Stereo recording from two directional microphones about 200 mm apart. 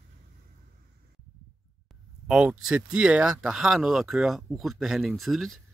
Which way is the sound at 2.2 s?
5° right (ahead or behind).